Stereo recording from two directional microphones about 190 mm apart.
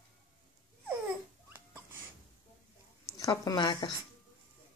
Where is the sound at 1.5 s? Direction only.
10° right (ahead or behind).